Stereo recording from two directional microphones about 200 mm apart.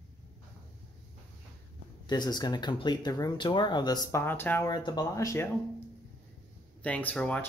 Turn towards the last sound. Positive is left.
turn(degrees=5)  # may be behind; listen again after turning